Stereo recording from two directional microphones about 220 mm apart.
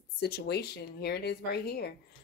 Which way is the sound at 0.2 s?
45° left (ahead or behind).